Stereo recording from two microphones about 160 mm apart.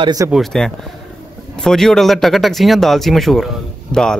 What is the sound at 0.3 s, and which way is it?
Speech, centre (ahead or behind).